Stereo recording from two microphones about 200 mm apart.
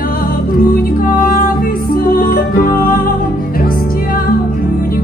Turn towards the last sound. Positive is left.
turn(degrees=45)  # may be behind; listen again after turning